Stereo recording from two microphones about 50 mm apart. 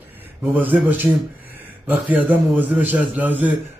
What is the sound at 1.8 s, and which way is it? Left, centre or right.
Speech, right.